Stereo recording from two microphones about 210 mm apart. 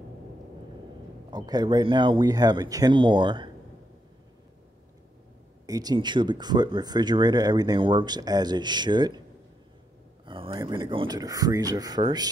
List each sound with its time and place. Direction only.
1.3 s speech: 20° right (ahead or behind)
5.7 s speech: 20° right (ahead or behind)
10.2 s speech: 25° right (ahead or behind)